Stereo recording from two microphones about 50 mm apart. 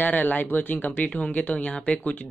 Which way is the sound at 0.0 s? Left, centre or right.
Left.